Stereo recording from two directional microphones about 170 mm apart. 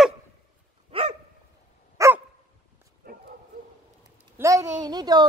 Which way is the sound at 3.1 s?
60° right (ahead or behind).